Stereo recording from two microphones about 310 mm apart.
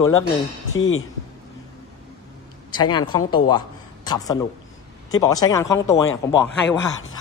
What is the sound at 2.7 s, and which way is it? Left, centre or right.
Speech, centre.